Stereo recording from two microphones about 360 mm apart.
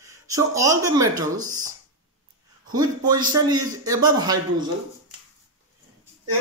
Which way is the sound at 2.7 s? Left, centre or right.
Centre.